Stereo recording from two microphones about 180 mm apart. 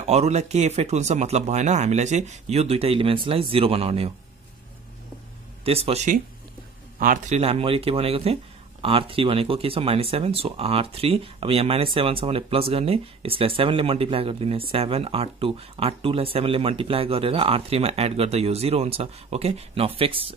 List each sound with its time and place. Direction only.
0.0 s speech: 35° right (ahead or behind)
5.7 s speech: 35° right (ahead or behind)
7.0 s speech: 45° right (ahead or behind)